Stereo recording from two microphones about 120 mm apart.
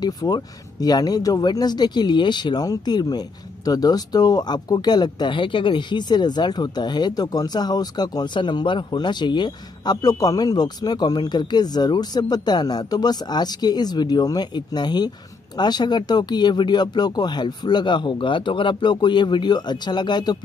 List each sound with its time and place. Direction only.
0.0 s speech: 35° left (ahead or behind)